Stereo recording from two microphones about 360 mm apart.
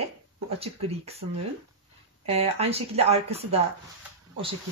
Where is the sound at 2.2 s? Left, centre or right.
Centre.